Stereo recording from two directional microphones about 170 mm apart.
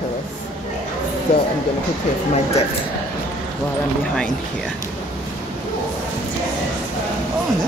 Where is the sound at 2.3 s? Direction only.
40° left (ahead or behind).